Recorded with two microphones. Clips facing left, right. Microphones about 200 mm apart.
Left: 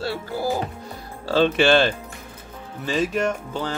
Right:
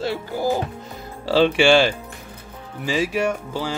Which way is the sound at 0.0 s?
20° right (ahead or behind).